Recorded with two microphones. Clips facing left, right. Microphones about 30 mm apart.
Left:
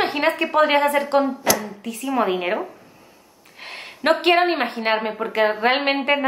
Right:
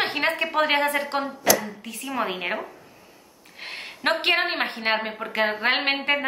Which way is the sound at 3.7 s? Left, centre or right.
Centre.